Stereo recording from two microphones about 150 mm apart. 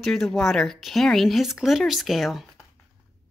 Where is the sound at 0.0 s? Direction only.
Centre (ahead or behind).